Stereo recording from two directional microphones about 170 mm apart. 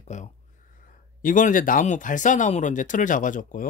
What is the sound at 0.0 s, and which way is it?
Speech, 45° left (ahead or behind).